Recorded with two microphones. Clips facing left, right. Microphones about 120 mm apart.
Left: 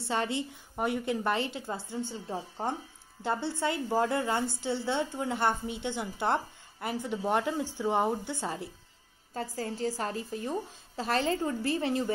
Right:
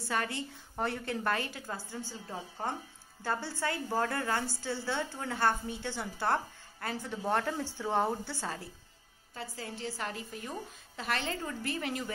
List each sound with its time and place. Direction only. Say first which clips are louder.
0.0 s a woman's voice: left 3 dB; 25° left (ahead or behind)
9.6 s a woman's voice: left 6 dB; 40° left (ahead or behind)